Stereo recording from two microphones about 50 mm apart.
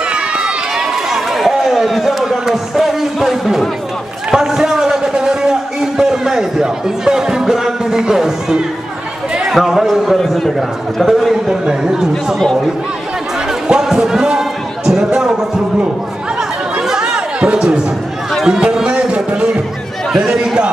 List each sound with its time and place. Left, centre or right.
0.1 s run: centre
4.3 s a man's voice: centre
13.7 s a sound: centre
16.8 s chatter: centre
18.4 s music: centre
20.1 s chatter: centre